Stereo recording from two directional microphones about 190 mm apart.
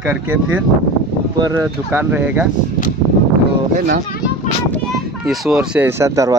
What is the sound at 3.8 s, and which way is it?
Speech, 50° right (ahead or behind).